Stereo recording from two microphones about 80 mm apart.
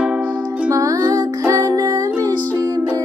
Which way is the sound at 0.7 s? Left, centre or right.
Right.